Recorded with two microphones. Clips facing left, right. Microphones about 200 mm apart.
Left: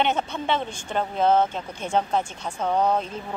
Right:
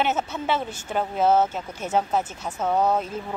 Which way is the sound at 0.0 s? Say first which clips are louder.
Even; 5° right (ahead or behind).